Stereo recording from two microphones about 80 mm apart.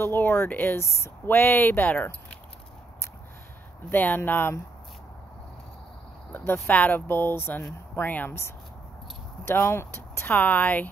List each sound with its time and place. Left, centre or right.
0.0 s speech: left
3.9 s speech: left
6.3 s speech: left
9.5 s speech: left